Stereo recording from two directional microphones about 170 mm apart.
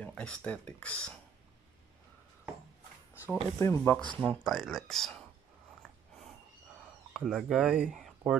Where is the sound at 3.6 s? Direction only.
15° left (ahead or behind).